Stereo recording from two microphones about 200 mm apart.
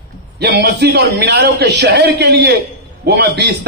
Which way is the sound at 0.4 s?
55° right (ahead or behind).